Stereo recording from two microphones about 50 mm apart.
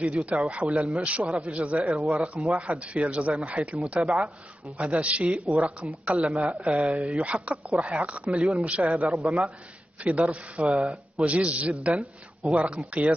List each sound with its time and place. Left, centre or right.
0.0 s a man's voice: right